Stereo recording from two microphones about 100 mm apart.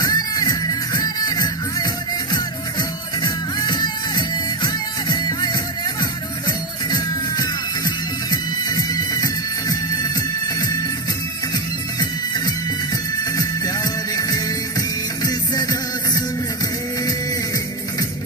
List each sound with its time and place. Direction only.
0.0 s music: 40° left (ahead or behind)
3.2 s music: 45° left (ahead or behind)
14.1 s music: 40° left (ahead or behind)